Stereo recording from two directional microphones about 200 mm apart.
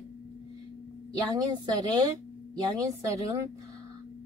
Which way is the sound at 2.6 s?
20° right (ahead or behind).